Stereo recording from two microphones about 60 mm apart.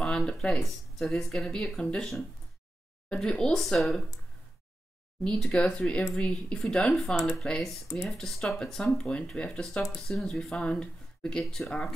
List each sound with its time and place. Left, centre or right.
0.0 s speech: centre
3.5 s speech: centre
5.2 s speech: centre